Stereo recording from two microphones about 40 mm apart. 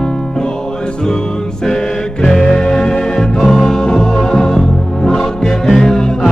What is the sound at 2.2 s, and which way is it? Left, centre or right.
Music, centre.